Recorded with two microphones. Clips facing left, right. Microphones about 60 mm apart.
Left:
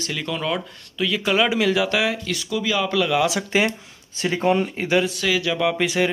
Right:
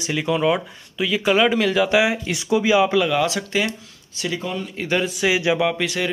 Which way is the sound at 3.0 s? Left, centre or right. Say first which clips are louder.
Even; centre.